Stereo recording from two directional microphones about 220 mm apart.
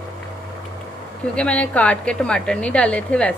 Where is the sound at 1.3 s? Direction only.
5° left (ahead or behind).